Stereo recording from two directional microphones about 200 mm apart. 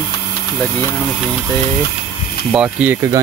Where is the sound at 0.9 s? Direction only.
Centre (ahead or behind).